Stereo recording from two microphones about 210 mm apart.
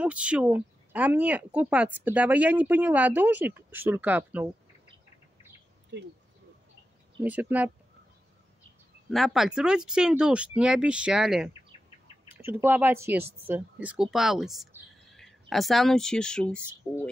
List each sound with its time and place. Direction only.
0.0 s speech: 5° right (ahead or behind)
5.9 s speech: 55° right (ahead or behind)
7.2 s speech: 10° right (ahead or behind)
9.1 s speech: centre (ahead or behind)